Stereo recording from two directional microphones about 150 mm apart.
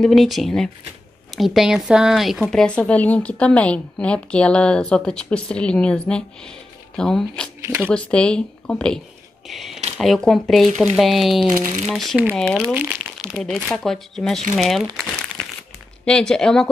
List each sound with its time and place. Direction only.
0.0 s speech: centre (ahead or behind)
7.6 s speech: 15° right (ahead or behind)
7.9 s speech: 5° left (ahead or behind)
11.6 s speech: 50° right (ahead or behind)
11.9 s speech: centre (ahead or behind)
12.7 s crumpling: 10° right (ahead or behind)
13.3 s speech: 5° left (ahead or behind)
15.4 s crumpling: 5° left (ahead or behind)
16.1 s speech: 5° left (ahead or behind)